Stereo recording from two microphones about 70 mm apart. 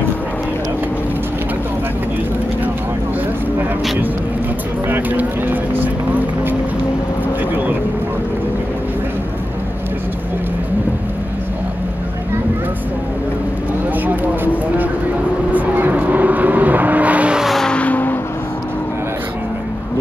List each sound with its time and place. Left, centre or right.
4.8 s vehicle: right
14.0 s a sound: right
15.5 s vehicle: right
17.4 s vehicle: centre
17.6 s vehicle: centre